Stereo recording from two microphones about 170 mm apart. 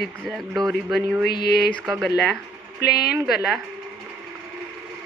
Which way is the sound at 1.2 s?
70° left (ahead or behind).